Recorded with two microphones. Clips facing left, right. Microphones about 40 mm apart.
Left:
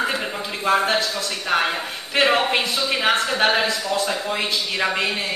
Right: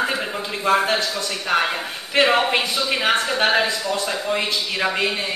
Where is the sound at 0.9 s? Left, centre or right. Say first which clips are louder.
Even; centre.